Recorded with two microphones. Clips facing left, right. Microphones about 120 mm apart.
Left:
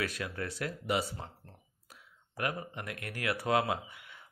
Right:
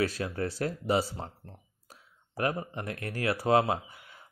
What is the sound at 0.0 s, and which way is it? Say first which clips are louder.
Speech: right 6 dB; 30° right (ahead or behind).